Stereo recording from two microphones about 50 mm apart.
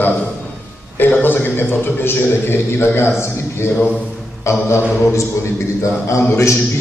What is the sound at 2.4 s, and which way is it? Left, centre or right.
A man's voice, left.